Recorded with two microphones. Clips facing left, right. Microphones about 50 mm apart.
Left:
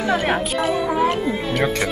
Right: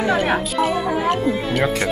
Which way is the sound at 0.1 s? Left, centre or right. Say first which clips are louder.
Right 1 dB; centre.